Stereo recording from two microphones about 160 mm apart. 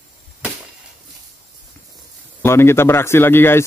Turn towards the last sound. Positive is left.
turn(degrees=15)  # may be behind; listen again after turning